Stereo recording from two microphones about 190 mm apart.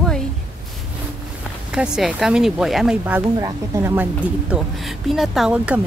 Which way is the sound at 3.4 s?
15° right (ahead or behind).